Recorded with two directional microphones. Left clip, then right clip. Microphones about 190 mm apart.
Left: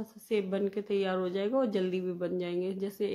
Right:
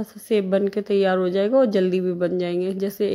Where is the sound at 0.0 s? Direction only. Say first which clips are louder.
Right 10 dB; 25° right (ahead or behind).